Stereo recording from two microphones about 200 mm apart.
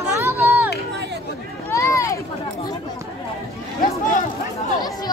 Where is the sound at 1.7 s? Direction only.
15° left (ahead or behind).